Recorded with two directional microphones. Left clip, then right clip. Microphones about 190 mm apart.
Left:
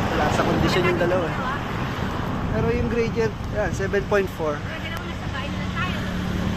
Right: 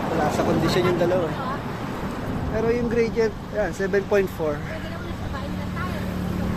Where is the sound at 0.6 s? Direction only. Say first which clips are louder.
Even; 10° right (ahead or behind).